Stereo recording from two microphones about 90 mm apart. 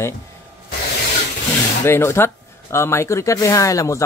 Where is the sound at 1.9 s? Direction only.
30° left (ahead or behind).